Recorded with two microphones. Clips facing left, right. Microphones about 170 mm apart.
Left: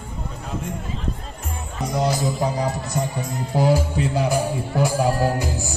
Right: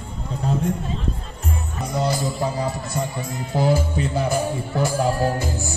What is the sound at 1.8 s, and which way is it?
A man's voice, 20° left (ahead or behind).